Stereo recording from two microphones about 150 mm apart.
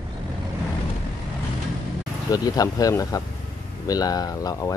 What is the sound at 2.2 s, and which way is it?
Speech, 25° left (ahead or behind).